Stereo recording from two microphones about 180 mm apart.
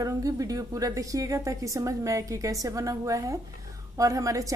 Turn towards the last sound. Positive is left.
turn(degrees=-20)  # may be behind; listen again after turning